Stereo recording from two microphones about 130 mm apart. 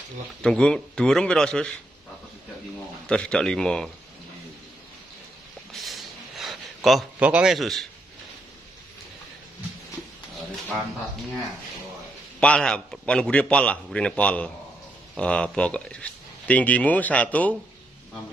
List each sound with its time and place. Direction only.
0.4 s speech: 5° left (ahead or behind)
3.1 s speech: 5° left (ahead or behind)
5.7 s a sound: centre (ahead or behind)
7.2 s speech: 10° right (ahead or behind)
7.5 s speech: centre (ahead or behind)
12.4 s speech: 10° left (ahead or behind)